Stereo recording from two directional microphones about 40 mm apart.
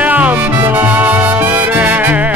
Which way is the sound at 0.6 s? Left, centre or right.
Right.